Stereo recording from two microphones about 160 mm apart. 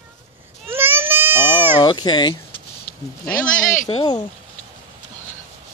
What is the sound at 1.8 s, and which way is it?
Speech, 30° left (ahead or behind).